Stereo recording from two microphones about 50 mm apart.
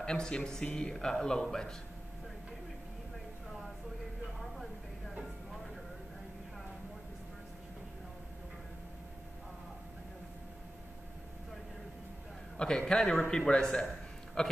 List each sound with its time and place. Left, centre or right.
0.0 s speech: centre
4.4 s a sound: centre
12.5 s speech: centre